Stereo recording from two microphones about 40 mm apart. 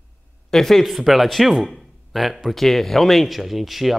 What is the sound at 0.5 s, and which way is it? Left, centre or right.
Speech, centre.